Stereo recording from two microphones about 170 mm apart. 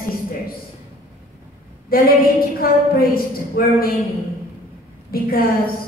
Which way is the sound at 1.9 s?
60° left (ahead or behind).